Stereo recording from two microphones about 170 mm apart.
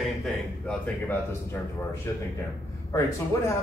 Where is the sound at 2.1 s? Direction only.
20° left (ahead or behind).